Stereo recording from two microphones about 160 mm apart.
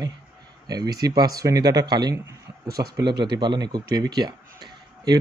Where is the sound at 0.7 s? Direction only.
25° right (ahead or behind).